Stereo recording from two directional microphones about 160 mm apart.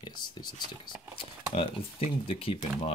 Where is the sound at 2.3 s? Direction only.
35° left (ahead or behind).